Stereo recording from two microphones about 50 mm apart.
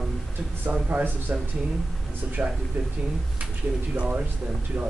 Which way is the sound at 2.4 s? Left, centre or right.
Right.